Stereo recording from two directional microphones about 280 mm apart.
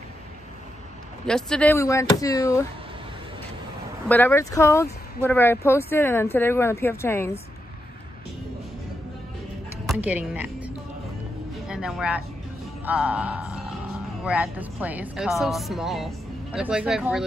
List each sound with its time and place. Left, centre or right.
1.2 s speech: centre
4.1 s speech: centre
9.8 s speech: centre
11.6 s a sound: centre
12.8 s speech: centre